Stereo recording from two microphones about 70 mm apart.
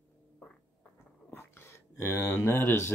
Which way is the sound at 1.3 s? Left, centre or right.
Left.